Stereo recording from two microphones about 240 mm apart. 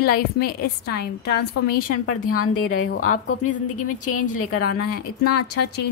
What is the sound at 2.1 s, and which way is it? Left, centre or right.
A woman's voice, left.